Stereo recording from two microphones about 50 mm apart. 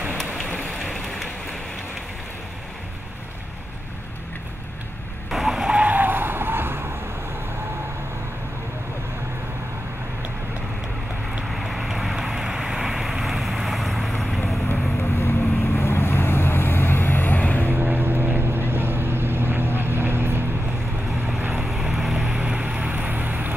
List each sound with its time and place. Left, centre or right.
0.5 s rain on surface: centre
5.3 s vehicle: centre
5.8 s skidding: right
11.4 s vehicle: centre
15.0 s vehicle: left
17.6 s boat: right
21.6 s vehicle: centre; by 23.5 s right